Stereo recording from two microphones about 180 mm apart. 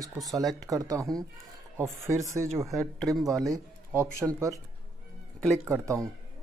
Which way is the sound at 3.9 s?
15° right (ahead or behind).